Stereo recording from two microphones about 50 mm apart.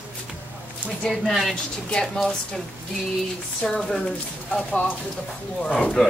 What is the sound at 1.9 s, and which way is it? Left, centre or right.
Speech, centre.